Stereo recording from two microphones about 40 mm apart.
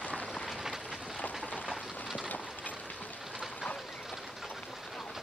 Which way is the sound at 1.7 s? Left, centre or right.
Centre.